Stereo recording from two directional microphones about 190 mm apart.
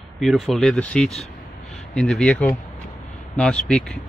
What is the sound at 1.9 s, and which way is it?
Speech, 5° left (ahead or behind).